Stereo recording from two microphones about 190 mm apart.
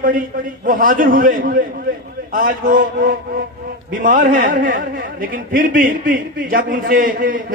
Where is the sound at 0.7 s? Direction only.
45° right (ahead or behind).